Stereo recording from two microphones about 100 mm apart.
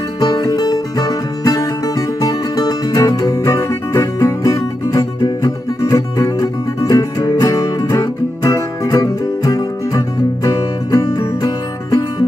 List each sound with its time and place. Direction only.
0.2 s music: 40° left (ahead or behind)